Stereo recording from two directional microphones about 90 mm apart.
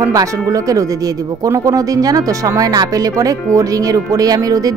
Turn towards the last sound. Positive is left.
turn(degrees=-40)  # may be behind; listen again after turning